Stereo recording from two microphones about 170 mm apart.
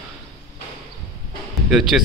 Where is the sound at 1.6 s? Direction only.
5° right (ahead or behind).